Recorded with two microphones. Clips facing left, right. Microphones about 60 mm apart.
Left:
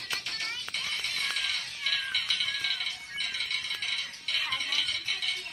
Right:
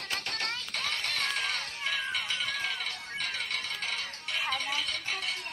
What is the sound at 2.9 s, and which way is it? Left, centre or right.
Music, right.